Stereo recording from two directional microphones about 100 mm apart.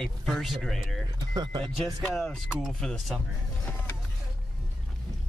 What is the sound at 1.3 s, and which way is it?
Speech, 45° right (ahead or behind).